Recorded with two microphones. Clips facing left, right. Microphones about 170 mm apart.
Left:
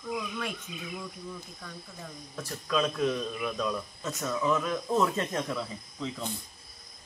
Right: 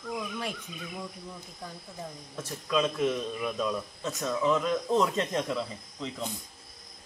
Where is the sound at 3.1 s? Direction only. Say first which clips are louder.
Right 1 dB; 5° right (ahead or behind).